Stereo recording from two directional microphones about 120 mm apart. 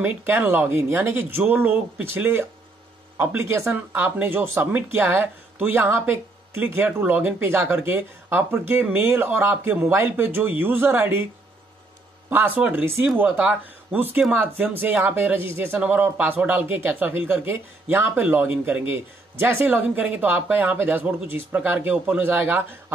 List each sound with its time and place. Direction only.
0.0 s speech: 15° right (ahead or behind)
12.3 s speech: 15° right (ahead or behind)